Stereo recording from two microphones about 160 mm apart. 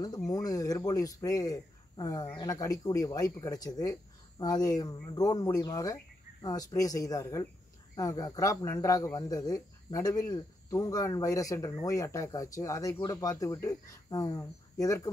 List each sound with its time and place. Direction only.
0.0 s speech: 25° left (ahead or behind)